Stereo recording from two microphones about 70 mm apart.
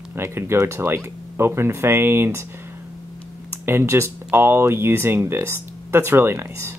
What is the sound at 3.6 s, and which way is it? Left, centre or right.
Speech, right.